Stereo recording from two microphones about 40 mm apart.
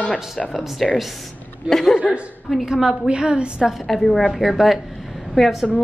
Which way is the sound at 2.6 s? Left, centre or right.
Centre.